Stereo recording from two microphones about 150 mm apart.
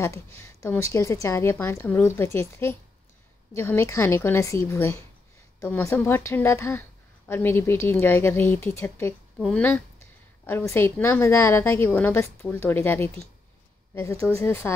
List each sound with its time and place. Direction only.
0.0 s a woman's voice: 20° left (ahead or behind)
14.2 s a woman's voice: 15° left (ahead or behind)